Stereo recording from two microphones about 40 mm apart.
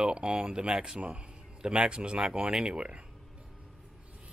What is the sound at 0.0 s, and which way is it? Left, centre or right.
Speech, right.